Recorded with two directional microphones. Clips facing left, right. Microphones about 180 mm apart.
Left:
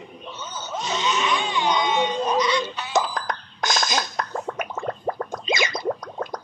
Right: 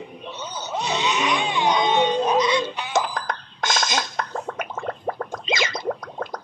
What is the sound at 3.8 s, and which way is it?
Beatboxing, centre (ahead or behind).